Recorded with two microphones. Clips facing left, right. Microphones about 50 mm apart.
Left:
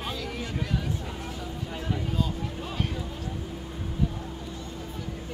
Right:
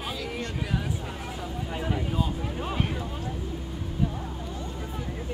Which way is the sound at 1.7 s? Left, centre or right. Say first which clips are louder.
Right 2 dB; centre.